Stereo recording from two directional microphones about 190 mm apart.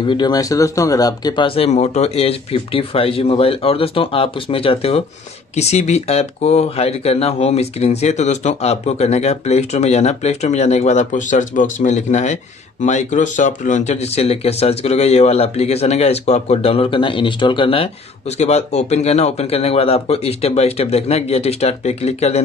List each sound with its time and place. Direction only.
0.0 s speech: 25° left (ahead or behind)